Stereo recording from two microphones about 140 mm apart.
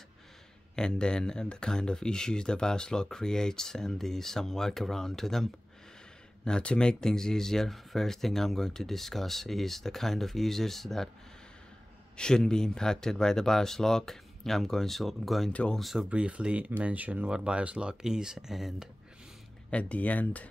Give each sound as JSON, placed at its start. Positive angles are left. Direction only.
{"t": 0.7, "sound": "speech", "side_deg": 5}
{"t": 12.2, "sound": "speech", "side_deg": 5}
{"t": 19.7, "sound": "speech", "side_deg": 10}